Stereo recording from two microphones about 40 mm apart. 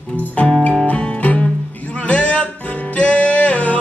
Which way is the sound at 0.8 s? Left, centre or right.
Left.